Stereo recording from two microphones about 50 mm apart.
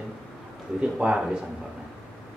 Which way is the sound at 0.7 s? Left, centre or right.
Centre.